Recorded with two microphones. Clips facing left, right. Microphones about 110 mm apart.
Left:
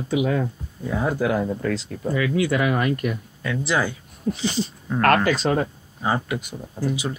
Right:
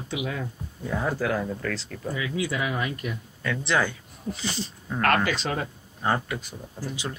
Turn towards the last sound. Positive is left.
turn(degrees=10)  # may be behind; listen again after turning